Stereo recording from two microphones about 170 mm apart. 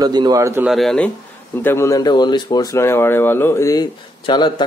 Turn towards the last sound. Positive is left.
turn(degrees=25)  # may be behind; listen again after turning